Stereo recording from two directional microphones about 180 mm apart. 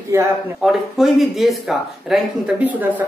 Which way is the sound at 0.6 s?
Centre (ahead or behind).